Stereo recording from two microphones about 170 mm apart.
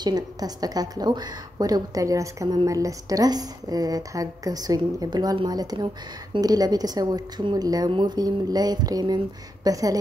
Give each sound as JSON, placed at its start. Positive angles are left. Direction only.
{"t": 0.0, "sound": "a woman's voice", "side_deg": -20}